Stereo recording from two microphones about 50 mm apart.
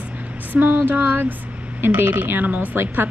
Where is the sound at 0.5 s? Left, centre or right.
Right.